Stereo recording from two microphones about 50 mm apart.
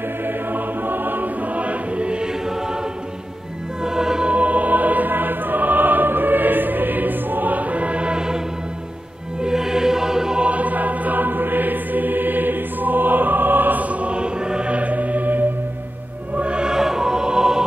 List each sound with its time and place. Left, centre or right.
0.2 s music: right; by 4.3 s centre
4.3 s music: right
9.4 s music: centre
10.4 s music: right
16.3 s music: right